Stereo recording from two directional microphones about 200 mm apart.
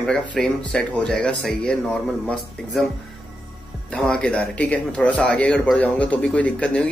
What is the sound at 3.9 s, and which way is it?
Speech, 5° left (ahead or behind).